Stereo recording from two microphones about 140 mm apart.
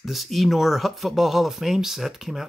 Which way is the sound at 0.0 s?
Centre (ahead or behind).